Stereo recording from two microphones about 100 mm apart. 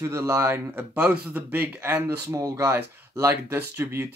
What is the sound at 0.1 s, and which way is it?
Speech, 25° right (ahead or behind).